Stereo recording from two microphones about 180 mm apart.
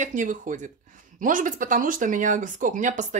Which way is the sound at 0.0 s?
45° right (ahead or behind).